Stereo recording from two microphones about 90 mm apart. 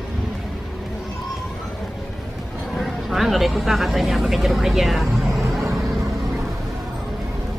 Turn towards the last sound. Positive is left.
turn(degrees=0)  # may be behind; listen again after turning